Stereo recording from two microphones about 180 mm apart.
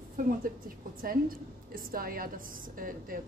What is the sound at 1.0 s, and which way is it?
A woman's voice, 55° right (ahead or behind).